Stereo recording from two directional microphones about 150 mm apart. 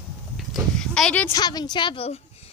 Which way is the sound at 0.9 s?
5° left (ahead or behind).